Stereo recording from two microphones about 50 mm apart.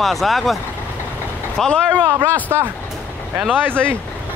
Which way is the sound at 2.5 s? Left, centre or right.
Right.